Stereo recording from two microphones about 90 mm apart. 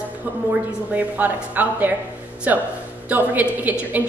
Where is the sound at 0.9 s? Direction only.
20° right (ahead or behind).